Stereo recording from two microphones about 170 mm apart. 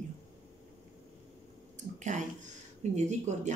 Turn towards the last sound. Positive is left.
turn(degrees=-45)  # may be behind; listen again after turning